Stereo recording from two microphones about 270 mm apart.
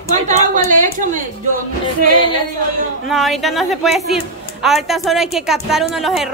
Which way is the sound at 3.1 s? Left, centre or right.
Centre.